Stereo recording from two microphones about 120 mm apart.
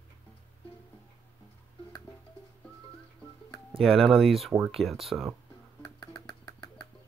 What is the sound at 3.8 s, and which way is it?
Speech, centre (ahead or behind).